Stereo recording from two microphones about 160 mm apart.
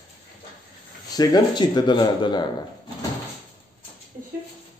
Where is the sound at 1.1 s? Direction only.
25° left (ahead or behind).